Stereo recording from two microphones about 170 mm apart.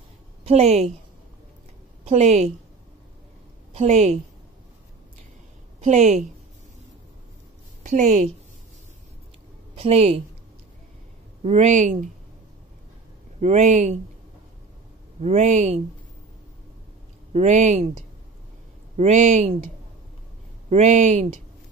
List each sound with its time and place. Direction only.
0.5 s speech: 40° right (ahead or behind)
2.0 s speech: 40° right (ahead or behind)
3.7 s speech: 40° right (ahead or behind)
5.8 s a woman's voice: 45° right (ahead or behind)
7.8 s a woman's voice: 45° right (ahead or behind)
9.8 s speech: 35° right (ahead or behind)
11.4 s speech: 40° right (ahead or behind)
13.4 s speech: 40° right (ahead or behind)
15.2 s speech: 40° right (ahead or behind)
17.3 s speech: 40° right (ahead or behind)
18.9 s speech: 40° right (ahead or behind)
20.7 s speech: 45° right (ahead or behind)